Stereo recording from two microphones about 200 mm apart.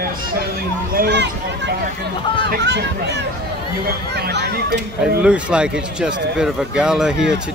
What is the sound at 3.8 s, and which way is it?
Speech, 55° right (ahead or behind).